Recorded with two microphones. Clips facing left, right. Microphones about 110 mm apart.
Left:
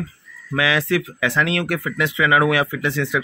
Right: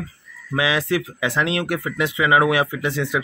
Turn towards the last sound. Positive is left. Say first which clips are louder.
# left 1 dB
turn(degrees=-20)  # may be behind; listen again after turning